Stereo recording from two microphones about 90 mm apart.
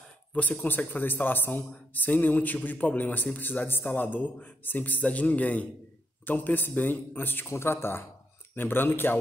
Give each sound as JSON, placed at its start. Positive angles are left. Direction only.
{"t": 0.3, "sound": "a man's voice", "side_deg": 15}